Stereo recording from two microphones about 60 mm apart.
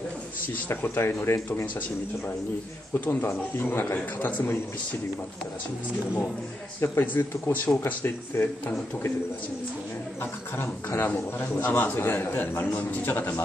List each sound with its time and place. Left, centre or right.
0.7 s a man's voice: left
2.9 s a man's voice: left
6.8 s a man's voice: left
11.1 s a man's voice: left